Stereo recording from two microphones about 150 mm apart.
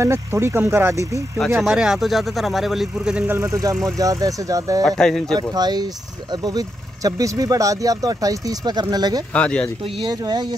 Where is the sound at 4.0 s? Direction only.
20° right (ahead or behind).